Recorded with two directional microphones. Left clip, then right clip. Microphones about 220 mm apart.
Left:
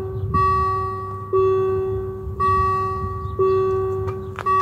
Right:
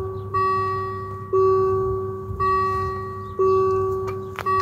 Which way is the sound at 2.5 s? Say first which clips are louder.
Left 2 dB; 5° left (ahead or behind).